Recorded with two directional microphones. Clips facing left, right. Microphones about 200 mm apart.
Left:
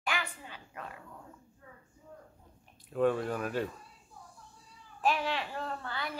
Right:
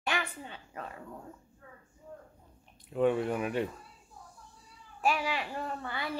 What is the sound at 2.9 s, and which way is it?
Speech, 15° right (ahead or behind).